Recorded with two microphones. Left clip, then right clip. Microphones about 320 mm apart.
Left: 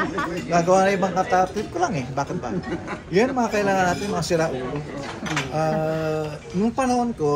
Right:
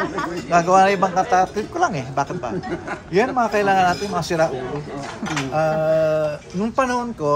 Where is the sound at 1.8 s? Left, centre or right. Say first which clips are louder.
Right 4 dB; centre.